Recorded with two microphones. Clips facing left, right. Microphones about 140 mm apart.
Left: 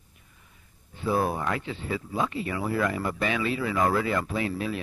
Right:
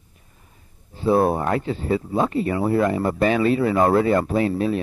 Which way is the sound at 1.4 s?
40° right (ahead or behind).